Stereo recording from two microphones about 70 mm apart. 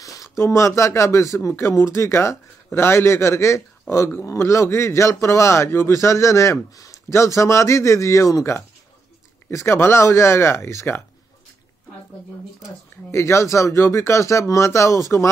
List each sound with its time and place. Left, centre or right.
0.0 s a sound: left
0.4 s a man's voice: left
1.5 s a man's voice: left
13.1 s a man's voice: left